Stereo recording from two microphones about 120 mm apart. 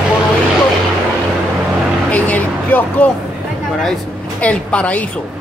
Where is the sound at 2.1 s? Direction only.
10° left (ahead or behind).